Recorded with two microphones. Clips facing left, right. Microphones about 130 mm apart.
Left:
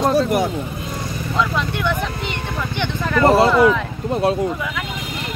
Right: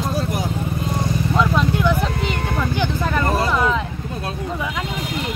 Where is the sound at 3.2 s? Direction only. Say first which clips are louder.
Left 11 dB; 90° left.